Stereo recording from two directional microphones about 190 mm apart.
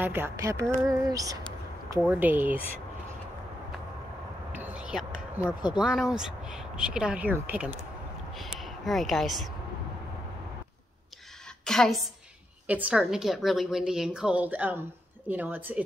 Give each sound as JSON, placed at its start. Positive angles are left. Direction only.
{"t": 0.0, "sound": "speech", "side_deg": -10}
{"t": 4.5, "sound": "a sound", "side_deg": -5}
{"t": 5.6, "sound": "a woman's voice", "side_deg": -5}
{"t": 11.6, "sound": "a woman's voice", "side_deg": 5}